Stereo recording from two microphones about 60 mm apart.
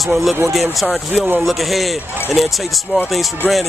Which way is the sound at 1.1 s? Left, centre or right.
Right.